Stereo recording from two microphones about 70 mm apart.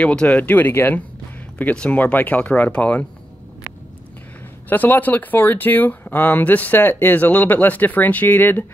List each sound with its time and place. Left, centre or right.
0.0 s speech: centre
4.6 s speech: left